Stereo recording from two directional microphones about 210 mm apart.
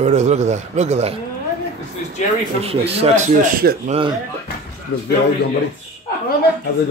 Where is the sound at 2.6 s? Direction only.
30° right (ahead or behind).